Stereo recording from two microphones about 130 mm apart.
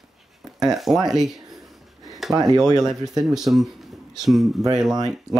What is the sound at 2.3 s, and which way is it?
Speech, 30° right (ahead or behind).